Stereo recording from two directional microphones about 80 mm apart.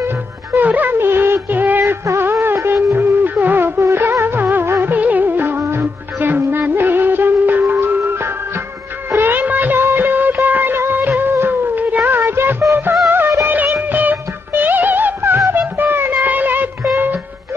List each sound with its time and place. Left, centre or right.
0.6 s music: right
9.1 s music of bollywood: right
13.5 s music: right